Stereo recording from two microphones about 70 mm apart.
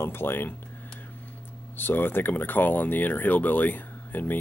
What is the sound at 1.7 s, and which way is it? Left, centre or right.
Speech, left.